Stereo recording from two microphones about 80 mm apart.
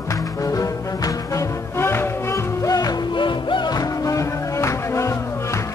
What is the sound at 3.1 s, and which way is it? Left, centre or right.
Music, left.